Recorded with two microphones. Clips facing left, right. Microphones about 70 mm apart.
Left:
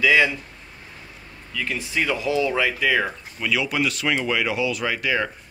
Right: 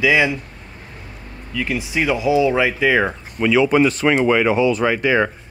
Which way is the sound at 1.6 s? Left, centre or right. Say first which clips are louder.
Right 4 dB; centre.